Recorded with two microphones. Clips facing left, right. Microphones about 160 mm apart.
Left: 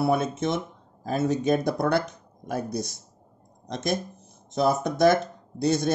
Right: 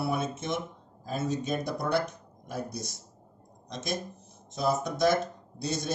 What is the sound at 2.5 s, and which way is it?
Speech, 60° left (ahead or behind).